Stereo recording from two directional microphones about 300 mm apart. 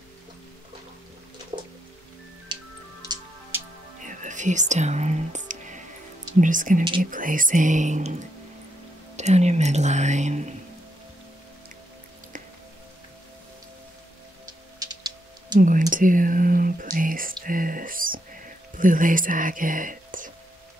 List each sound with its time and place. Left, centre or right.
4.0 s whispering: right
6.4 s speech: right
14.8 s music: centre
15.6 s speech: right